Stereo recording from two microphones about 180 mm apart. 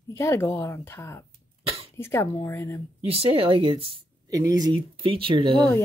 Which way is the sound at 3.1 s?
30° right (ahead or behind).